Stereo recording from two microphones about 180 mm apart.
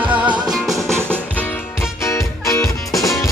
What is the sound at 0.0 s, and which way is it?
Music, 10° right (ahead or behind).